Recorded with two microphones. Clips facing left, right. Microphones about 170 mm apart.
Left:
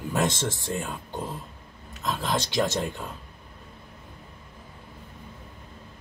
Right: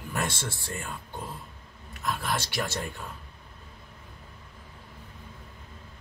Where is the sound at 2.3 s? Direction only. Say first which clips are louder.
Left 6 dB; 20° left (ahead or behind).